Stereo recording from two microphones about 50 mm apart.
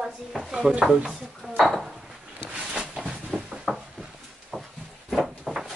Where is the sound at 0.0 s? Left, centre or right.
Centre.